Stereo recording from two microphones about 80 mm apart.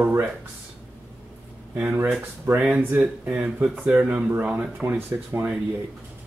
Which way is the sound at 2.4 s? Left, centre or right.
Right.